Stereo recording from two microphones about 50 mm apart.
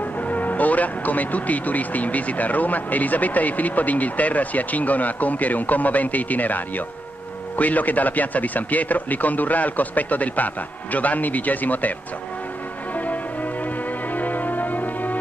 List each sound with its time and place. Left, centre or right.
0.3 s speech: left
14.1 s music: left